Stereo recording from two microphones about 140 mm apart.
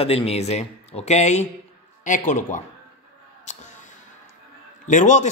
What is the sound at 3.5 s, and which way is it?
Music, 55° left (ahead or behind).